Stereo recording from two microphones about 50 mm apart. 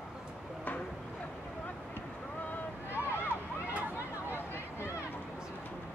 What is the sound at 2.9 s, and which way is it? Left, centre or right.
Vehicle, left.